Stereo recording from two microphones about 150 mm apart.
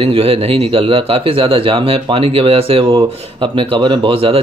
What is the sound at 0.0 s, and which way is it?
Speech, 40° right (ahead or behind).